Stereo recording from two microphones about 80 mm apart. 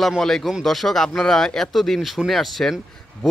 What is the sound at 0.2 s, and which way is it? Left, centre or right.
A man's voice, centre.